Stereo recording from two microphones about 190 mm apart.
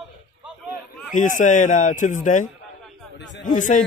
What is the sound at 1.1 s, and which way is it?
A man's voice, 40° left (ahead or behind).